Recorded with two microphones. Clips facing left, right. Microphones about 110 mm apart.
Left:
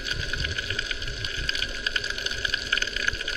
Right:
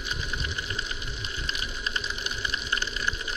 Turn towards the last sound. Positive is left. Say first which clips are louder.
# even
turn(degrees=-20)  # may be behind; listen again after turning